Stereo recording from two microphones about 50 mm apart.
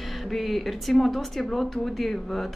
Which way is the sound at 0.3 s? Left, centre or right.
Centre.